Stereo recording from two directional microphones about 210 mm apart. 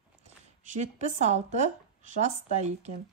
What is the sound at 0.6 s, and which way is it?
A man's voice, 35° right (ahead or behind).